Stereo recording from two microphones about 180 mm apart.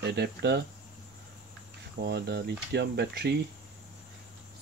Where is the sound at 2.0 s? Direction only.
70° right (ahead or behind).